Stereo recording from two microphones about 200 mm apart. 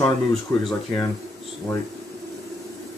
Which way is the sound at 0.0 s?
5° left (ahead or behind).